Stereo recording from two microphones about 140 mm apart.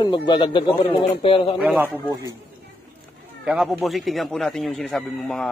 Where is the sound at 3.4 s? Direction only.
5° right (ahead or behind).